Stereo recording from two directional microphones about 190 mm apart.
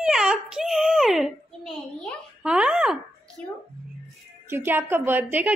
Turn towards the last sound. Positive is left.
turn(degrees=-10)  # may be behind; listen again after turning